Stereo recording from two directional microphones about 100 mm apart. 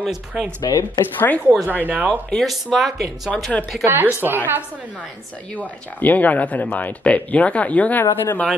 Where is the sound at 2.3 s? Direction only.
Centre (ahead or behind).